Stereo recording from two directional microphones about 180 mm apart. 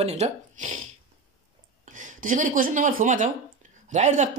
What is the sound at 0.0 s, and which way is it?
Speech, 40° right (ahead or behind).